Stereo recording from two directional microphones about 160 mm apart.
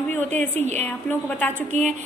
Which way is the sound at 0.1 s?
10° left (ahead or behind).